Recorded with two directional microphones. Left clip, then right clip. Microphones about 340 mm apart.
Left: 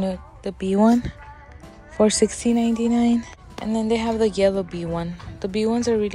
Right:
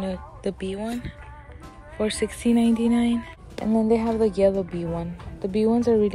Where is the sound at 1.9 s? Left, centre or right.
Centre.